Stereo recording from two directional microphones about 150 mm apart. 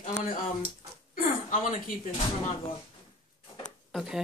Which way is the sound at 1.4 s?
60° left (ahead or behind).